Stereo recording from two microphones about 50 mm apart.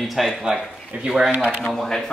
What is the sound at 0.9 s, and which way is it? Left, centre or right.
Speech, centre.